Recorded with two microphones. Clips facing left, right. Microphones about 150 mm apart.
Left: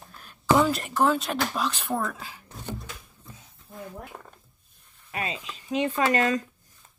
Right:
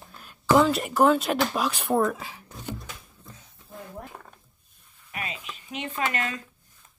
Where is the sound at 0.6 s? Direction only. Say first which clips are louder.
Right 3 dB; 5° right (ahead or behind).